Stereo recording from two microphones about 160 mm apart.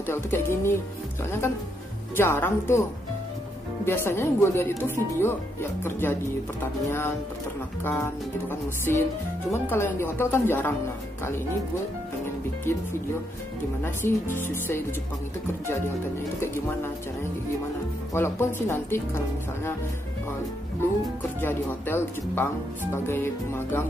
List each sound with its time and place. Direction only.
0.0 s speech: 15° left (ahead or behind)
2.1 s speech: 15° left (ahead or behind)
3.8 s speech: 15° left (ahead or behind)
13.8 s speech: 15° left (ahead or behind)
16.3 s speech: 15° left (ahead or behind)
18.1 s speech: 15° left (ahead or behind)
21.4 s speech: 15° left (ahead or behind)